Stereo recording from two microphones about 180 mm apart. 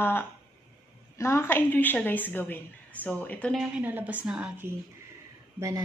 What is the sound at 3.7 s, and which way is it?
A woman's voice, 10° right (ahead or behind).